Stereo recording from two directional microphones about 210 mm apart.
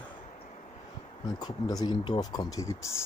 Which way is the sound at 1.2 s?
20° left (ahead or behind).